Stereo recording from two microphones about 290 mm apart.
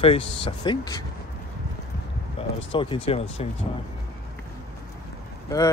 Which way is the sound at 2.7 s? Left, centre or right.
Centre.